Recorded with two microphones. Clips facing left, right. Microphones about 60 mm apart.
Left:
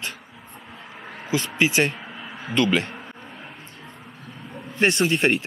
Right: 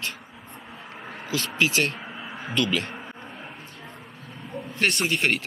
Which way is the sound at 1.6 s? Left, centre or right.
Centre.